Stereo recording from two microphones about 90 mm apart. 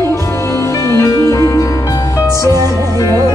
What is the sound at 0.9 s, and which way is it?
Music, 35° left (ahead or behind).